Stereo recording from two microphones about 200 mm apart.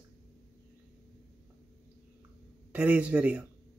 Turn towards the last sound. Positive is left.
turn(degrees=-5)  # may be behind; listen again after turning